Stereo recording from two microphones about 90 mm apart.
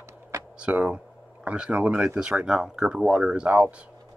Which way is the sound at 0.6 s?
15° right (ahead or behind).